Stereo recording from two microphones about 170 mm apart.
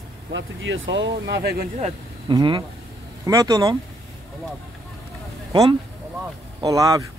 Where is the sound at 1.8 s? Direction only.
35° right (ahead or behind).